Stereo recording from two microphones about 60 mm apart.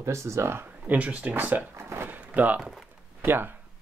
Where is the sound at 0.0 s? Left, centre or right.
Right.